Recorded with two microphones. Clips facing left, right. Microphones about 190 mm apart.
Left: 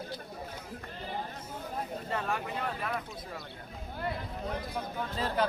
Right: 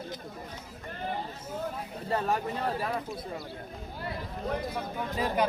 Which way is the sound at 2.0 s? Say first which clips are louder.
Right 8 dB; 35° right (ahead or behind).